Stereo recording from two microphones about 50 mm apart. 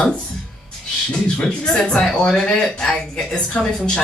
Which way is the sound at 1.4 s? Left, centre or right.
Centre.